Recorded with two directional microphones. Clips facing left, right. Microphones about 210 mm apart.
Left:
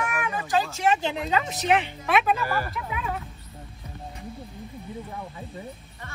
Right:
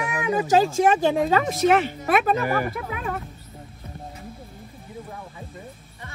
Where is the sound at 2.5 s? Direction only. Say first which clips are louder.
Right 5 dB; 15° right (ahead or behind).